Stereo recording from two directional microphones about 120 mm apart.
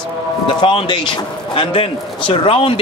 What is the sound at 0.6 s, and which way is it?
Speech, 40° left (ahead or behind).